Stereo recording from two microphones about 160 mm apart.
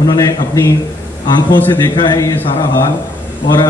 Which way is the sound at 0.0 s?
25° left (ahead or behind).